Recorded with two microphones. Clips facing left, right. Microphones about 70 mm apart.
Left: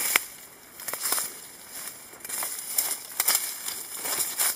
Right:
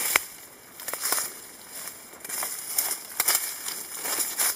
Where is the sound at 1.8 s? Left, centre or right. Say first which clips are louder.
Right 2 dB; centre.